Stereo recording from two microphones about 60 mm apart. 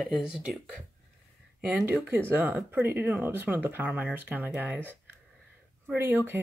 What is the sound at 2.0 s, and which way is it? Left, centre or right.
Speech, right.